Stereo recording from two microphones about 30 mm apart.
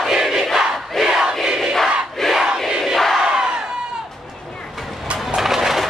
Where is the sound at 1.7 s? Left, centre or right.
Centre.